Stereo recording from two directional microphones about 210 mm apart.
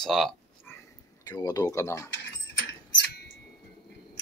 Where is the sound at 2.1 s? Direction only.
60° left (ahead or behind).